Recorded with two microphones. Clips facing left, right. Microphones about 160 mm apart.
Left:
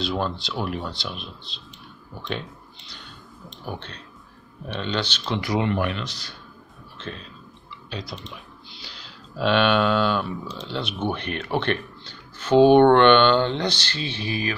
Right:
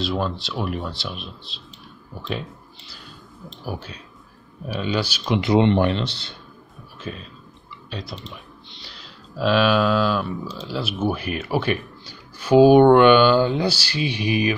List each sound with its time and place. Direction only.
0.0 s speech: centre (ahead or behind)
3.6 s speech: 5° right (ahead or behind)
5.4 s speech: 25° right (ahead or behind)
7.0 s speech: 5° right (ahead or behind)